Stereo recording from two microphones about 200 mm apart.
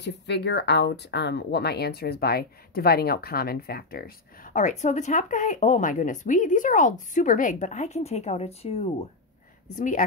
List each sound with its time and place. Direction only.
0.0 s speech: 55° left (ahead or behind); by 10.0 s 40° left (ahead or behind)